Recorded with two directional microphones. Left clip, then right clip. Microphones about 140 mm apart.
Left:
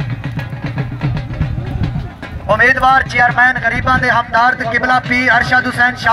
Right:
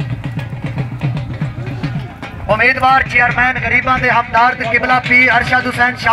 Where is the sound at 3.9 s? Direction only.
30° right (ahead or behind).